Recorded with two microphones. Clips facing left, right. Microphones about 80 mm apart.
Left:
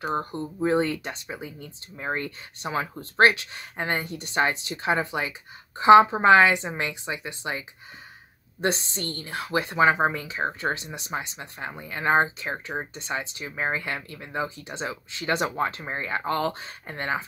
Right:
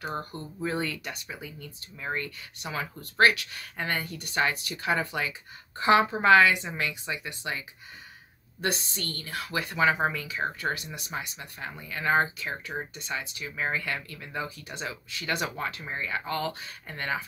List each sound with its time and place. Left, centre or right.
0.0 s a woman's voice: left